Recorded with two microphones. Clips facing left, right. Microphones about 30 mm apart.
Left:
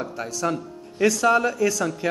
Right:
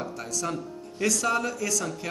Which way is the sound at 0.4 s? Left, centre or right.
Centre.